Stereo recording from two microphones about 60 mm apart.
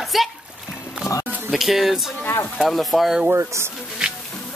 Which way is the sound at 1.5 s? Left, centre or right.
Centre.